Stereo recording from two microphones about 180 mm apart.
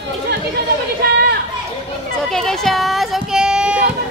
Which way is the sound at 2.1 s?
Centre (ahead or behind).